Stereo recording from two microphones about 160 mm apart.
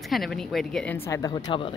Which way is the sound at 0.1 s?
Centre (ahead or behind).